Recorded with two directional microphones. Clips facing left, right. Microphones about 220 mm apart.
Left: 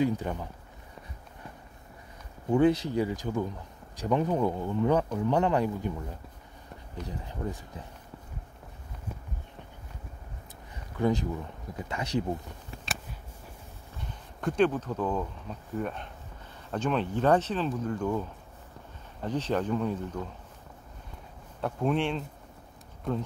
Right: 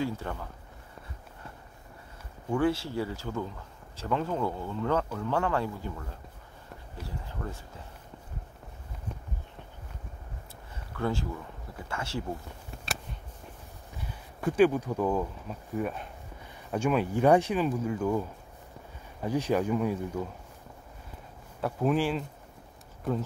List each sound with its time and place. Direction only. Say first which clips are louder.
0.0 s speech: left 5 dB; 20° left (ahead or behind)
2.5 s speech: left 4 dB; 20° left (ahead or behind)
7.1 s speech: left 3 dB; 15° left (ahead or behind)
10.9 s speech: left 4 dB; 15° left (ahead or behind)
14.0 s speech: right 1 dB; 5° right (ahead or behind)
19.2 s speech: right 2 dB; 10° right (ahead or behind)
21.5 s speech: right 1 dB; 5° right (ahead or behind)